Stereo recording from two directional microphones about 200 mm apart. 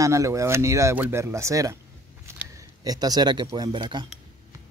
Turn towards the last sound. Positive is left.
turn(degrees=-20)  # may be behind; listen again after turning